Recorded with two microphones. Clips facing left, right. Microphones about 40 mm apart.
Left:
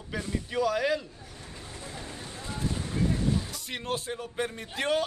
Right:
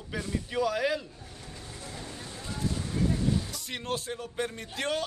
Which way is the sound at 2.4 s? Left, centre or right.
Left.